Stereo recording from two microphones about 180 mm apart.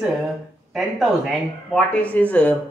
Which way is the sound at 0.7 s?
Centre (ahead or behind).